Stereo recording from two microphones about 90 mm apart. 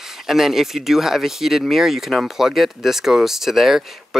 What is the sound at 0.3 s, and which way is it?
Speech, 5° right (ahead or behind).